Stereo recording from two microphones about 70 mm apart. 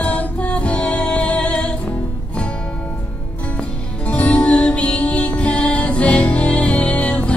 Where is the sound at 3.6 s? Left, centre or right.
Centre.